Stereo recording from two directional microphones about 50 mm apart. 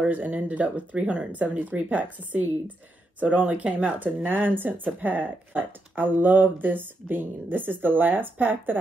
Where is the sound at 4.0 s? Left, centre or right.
Right.